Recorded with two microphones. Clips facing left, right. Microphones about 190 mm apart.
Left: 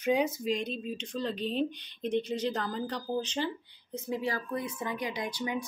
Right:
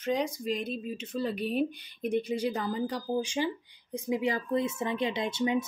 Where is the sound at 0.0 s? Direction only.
5° left (ahead or behind).